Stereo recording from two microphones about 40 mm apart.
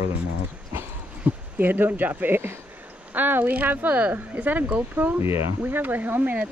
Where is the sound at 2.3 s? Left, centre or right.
Right.